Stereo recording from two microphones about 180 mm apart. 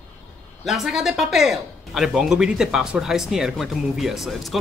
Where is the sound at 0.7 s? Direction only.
5° right (ahead or behind).